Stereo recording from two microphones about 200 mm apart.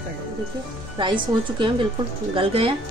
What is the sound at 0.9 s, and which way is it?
Speech, 25° right (ahead or behind).